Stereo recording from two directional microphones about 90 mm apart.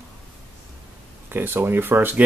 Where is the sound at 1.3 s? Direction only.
25° right (ahead or behind).